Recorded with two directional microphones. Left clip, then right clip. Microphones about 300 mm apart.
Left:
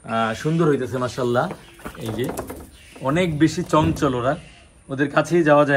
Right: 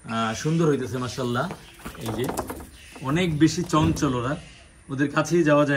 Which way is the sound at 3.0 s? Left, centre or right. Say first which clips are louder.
Left 3 dB; centre.